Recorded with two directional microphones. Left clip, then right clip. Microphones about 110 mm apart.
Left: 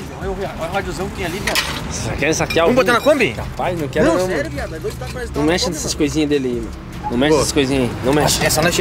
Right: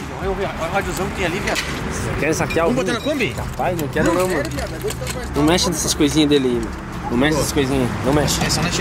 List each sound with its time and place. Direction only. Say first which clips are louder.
2.1 s speech: left 3 dB; 5° left (ahead or behind); by 3.3 s 25° left (ahead or behind)
3.6 s speech: left 3 dB; 10° left (ahead or behind)
8.5 s speech: left 6 dB; 30° left (ahead or behind)